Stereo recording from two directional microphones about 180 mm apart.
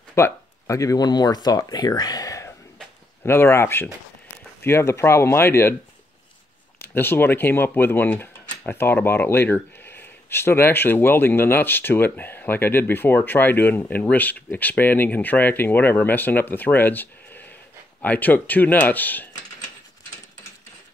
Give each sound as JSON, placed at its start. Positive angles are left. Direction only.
{"t": 0.1, "sound": "speech", "side_deg": 15}
{"t": 6.9, "sound": "speech", "side_deg": 10}